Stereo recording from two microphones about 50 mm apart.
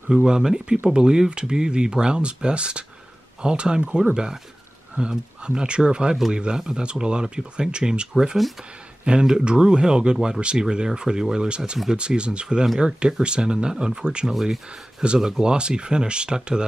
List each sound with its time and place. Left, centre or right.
0.1 s speech: centre